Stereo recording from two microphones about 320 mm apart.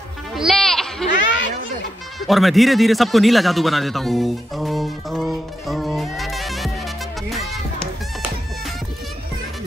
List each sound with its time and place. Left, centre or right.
0.4 s goat: centre
1.3 s a sound: left
2.2 s speech: centre
7.2 s music: centre